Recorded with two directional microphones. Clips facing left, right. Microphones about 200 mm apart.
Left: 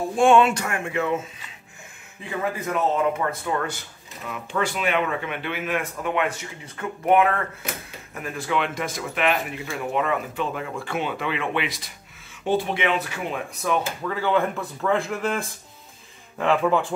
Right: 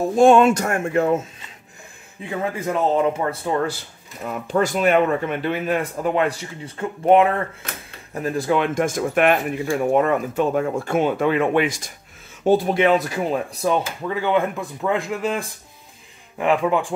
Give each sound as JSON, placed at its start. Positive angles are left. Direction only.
{"t": 0.1, "sound": "speech", "side_deg": -40}
{"t": 2.7, "sound": "speech", "side_deg": -30}
{"t": 14.0, "sound": "speech", "side_deg": -15}